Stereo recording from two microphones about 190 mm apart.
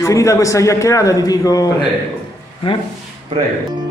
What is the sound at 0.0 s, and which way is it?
A man's voice, 15° left (ahead or behind).